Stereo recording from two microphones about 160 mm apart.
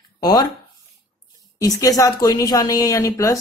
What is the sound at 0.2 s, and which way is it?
Speech, 25° left (ahead or behind).